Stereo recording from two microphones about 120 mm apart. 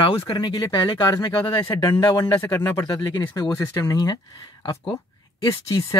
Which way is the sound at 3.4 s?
20° left (ahead or behind).